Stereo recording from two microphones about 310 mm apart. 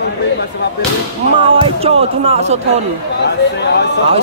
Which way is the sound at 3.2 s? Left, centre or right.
Left.